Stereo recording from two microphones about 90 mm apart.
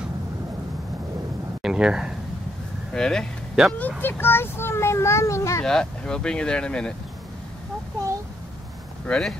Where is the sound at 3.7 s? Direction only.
20° left (ahead or behind).